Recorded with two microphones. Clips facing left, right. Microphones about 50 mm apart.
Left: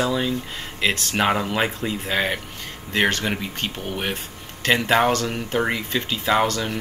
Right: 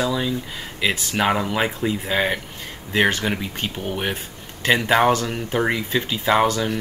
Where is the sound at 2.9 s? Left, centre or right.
Centre.